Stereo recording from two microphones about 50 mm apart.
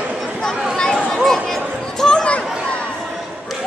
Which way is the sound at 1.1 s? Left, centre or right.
Centre.